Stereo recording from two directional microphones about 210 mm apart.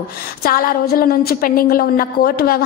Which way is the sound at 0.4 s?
45° left (ahead or behind).